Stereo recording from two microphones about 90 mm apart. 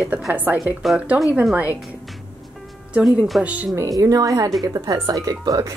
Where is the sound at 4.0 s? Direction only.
40° right (ahead or behind).